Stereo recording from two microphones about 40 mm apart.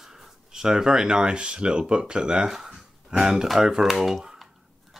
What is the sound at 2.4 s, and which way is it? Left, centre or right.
Speech, centre.